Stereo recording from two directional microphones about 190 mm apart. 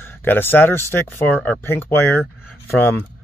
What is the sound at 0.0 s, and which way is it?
Speech, 10° left (ahead or behind).